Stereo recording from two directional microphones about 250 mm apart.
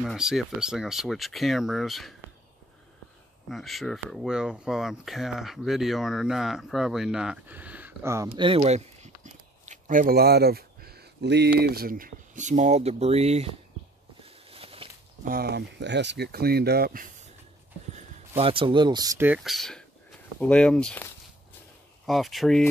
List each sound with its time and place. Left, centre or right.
0.0 s speech: centre
3.4 s speech: centre; by 13.5 s right
14.2 s a sound: right
15.2 s speech: right
18.4 s speech: right; by 22.7 s centre